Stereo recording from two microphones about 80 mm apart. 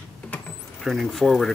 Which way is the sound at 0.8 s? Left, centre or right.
Centre.